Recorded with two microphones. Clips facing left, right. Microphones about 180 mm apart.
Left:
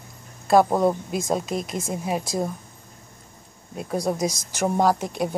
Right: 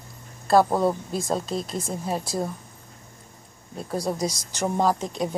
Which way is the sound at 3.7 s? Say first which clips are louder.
Left 2 dB; 15° left (ahead or behind).